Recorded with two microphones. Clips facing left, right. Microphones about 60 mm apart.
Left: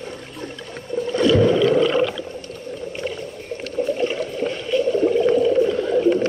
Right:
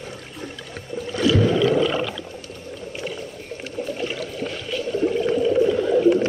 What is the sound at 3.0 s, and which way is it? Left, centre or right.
Rowboat, centre.